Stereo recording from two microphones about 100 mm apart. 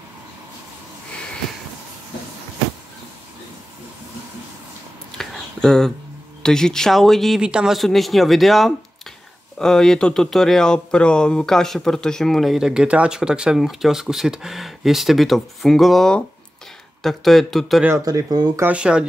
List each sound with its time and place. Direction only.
5.1 s a sound: 5° left (ahead or behind)
6.4 s speech: 5° left (ahead or behind)
17.9 s speech: 35° right (ahead or behind)
18.7 s speech: 10° right (ahead or behind)